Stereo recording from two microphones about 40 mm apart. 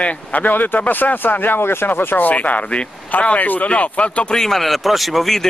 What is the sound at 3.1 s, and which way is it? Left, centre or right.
Speech, left.